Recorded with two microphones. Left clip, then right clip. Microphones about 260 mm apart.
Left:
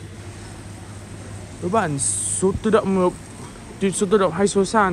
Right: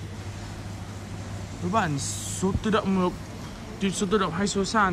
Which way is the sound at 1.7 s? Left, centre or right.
Centre.